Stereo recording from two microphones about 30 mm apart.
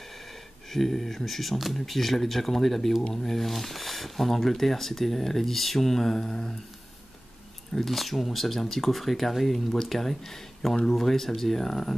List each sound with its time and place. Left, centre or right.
0.1 s speech: centre
3.3 s speech: centre
7.8 s speech: centre